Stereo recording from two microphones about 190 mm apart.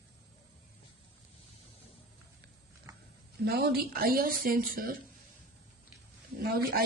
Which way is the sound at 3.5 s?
55° right (ahead or behind).